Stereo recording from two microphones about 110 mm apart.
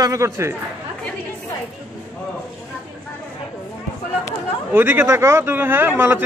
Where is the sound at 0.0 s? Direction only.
30° right (ahead or behind).